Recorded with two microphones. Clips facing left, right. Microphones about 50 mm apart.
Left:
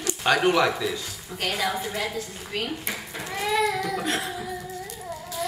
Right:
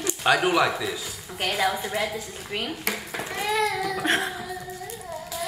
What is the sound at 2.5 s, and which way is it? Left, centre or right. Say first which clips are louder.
Speech: left 1 dB; centre.